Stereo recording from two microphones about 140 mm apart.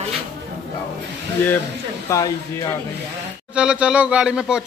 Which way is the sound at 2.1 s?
25° left (ahead or behind).